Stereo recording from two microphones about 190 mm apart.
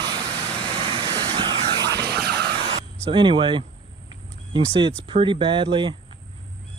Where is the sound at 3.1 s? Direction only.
25° right (ahead or behind).